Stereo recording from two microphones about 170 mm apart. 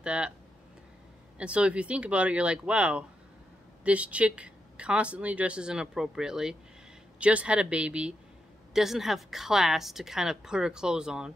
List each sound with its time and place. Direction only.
0.0 s speech: 5° right (ahead or behind)
1.4 s a woman's voice: 5° right (ahead or behind)